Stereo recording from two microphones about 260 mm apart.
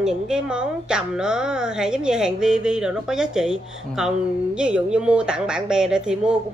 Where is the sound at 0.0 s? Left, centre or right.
Centre.